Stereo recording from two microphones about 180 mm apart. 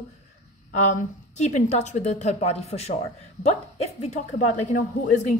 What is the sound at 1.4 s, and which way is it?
A woman's voice, 40° left (ahead or behind).